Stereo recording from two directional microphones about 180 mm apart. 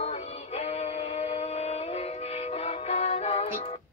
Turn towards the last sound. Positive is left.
turn(degrees=30)  # may be behind; listen again after turning